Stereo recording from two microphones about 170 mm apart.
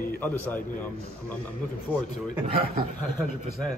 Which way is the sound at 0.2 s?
10° left (ahead or behind).